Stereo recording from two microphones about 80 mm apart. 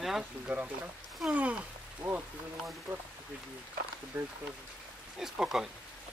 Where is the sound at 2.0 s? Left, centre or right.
Centre.